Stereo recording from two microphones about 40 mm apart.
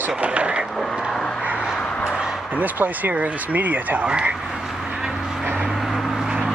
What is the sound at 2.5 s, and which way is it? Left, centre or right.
Speech, right.